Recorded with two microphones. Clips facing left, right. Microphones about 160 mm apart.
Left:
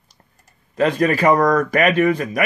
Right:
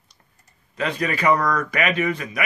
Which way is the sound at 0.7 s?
45° left (ahead or behind).